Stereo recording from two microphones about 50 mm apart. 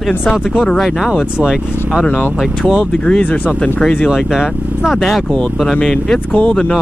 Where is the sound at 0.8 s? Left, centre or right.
Centre.